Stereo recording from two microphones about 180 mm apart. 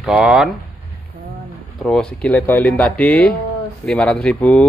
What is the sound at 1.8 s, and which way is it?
Speech, centre (ahead or behind).